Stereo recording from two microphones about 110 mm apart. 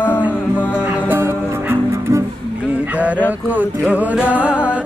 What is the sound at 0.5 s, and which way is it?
Music, 15° right (ahead or behind).